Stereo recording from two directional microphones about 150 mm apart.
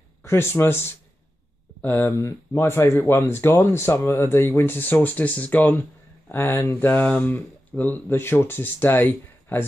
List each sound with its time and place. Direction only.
0.2 s speech: 15° left (ahead or behind)